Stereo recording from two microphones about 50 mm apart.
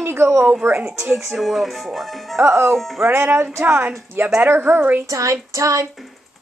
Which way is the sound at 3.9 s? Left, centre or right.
Right.